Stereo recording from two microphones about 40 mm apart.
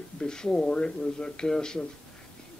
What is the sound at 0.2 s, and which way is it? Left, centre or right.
A woman's voice, centre.